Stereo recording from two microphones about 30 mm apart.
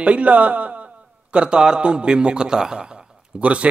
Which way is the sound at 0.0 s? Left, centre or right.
Right.